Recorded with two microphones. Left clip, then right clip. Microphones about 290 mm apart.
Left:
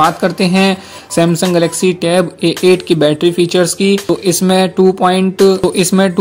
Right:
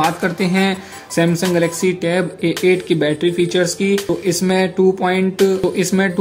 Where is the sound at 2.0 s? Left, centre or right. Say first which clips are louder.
Left 6 dB; centre.